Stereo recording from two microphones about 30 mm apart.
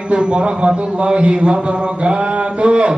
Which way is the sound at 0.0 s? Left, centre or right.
Right.